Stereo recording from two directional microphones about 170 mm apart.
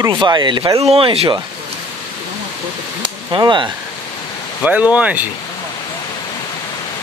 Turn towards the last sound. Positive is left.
turn(degrees=-10)  # may be behind; listen again after turning